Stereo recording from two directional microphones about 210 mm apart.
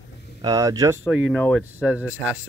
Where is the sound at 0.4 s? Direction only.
15° right (ahead or behind).